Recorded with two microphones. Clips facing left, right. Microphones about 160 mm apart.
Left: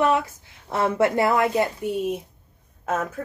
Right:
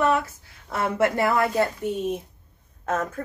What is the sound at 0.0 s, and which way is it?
A woman's voice, 20° left (ahead or behind).